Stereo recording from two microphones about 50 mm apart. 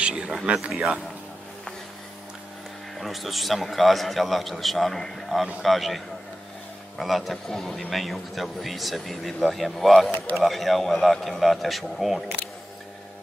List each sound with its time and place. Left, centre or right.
0.0 s a man's voice: centre
3.0 s a man's voice: centre